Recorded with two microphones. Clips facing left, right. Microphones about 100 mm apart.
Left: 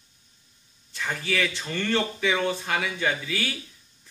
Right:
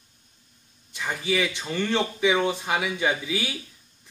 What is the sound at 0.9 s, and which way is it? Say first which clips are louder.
A man's voice: right 2 dB; 15° right (ahead or behind).